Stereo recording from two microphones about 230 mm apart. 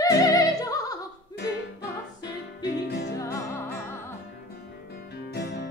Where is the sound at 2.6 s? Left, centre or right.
Left.